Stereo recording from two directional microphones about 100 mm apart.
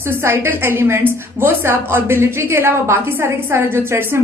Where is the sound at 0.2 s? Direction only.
25° right (ahead or behind).